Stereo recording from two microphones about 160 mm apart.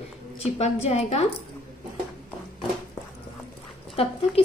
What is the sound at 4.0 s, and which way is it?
Speech, 35° left (ahead or behind).